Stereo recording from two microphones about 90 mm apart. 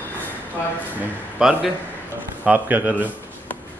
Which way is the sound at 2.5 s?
20° right (ahead or behind).